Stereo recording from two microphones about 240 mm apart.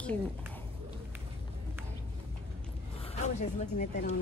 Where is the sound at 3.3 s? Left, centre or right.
Left.